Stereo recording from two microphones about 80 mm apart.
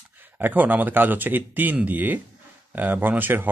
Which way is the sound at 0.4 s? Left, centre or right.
Right.